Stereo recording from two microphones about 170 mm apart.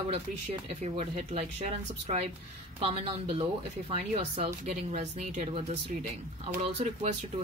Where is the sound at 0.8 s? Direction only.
45° right (ahead or behind).